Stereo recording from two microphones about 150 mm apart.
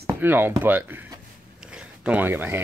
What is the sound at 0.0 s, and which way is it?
Speech, 15° right (ahead or behind).